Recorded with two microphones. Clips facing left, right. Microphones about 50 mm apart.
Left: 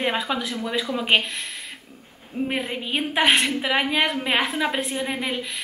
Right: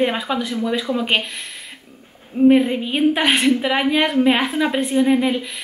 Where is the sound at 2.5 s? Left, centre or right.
Centre.